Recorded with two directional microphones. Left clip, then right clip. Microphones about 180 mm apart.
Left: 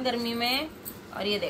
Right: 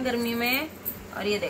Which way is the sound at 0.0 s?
20° left (ahead or behind).